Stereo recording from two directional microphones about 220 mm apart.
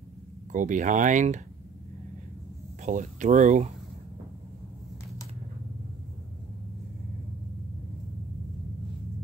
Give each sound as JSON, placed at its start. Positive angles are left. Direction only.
{"t": 0.5, "sound": "speech", "side_deg": -35}
{"t": 2.8, "sound": "speech", "side_deg": -35}